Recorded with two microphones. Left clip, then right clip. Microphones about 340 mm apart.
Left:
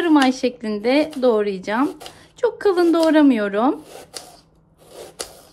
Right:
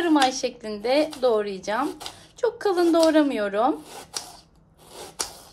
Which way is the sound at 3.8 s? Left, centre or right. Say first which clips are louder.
Right 1 dB; centre.